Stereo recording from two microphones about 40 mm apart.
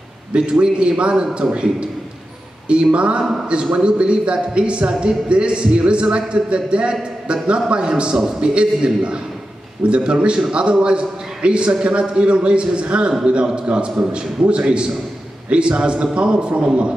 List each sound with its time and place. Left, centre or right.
0.3 s a man's voice: right
2.7 s a man's voice: right